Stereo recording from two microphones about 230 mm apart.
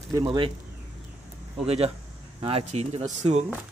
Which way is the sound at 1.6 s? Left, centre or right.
Right.